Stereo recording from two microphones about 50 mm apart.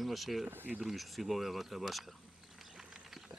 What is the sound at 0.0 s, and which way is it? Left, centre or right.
Speech, centre.